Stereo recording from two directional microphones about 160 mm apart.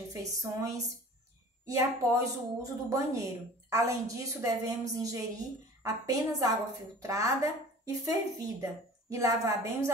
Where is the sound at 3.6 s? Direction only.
20° right (ahead or behind).